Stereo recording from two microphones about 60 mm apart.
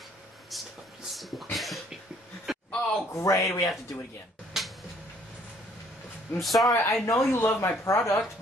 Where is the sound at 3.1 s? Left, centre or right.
Left.